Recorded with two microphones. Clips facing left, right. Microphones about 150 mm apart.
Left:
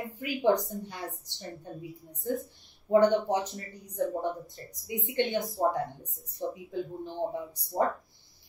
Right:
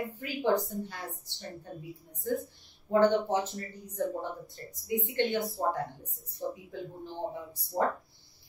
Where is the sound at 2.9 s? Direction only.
15° left (ahead or behind).